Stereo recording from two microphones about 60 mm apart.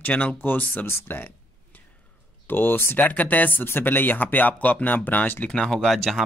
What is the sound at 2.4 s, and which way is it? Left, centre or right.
Speech, left.